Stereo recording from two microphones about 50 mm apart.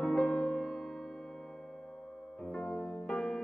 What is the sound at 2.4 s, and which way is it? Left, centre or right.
Music, centre.